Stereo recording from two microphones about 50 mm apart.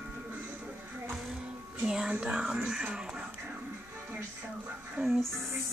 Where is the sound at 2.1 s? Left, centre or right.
Centre.